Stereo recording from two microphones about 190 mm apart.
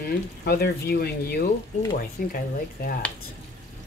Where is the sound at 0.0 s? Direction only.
55° left (ahead or behind).